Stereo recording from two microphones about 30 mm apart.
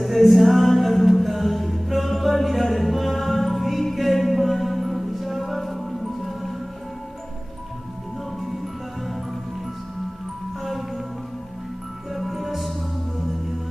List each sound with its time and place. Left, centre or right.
0.0 s music: centre
10.6 s music: centre
12.1 s music: centre